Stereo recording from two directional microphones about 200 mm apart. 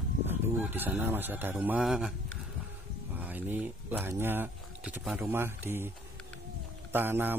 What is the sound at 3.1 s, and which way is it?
Speech, 10° right (ahead or behind).